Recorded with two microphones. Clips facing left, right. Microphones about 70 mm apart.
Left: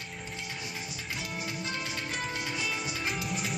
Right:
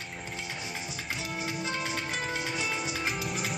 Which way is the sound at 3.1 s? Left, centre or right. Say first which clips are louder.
Right 1 dB; centre.